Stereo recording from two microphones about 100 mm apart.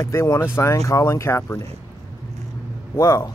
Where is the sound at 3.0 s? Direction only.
30° left (ahead or behind).